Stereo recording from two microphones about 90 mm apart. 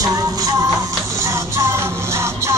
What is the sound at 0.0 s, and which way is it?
Music, 45° right (ahead or behind).